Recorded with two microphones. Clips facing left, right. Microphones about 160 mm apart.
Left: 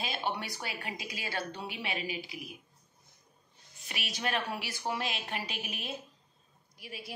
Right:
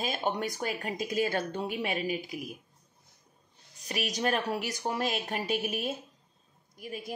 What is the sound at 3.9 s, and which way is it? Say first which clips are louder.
A woman's voice: right 5 dB; 40° right (ahead or behind).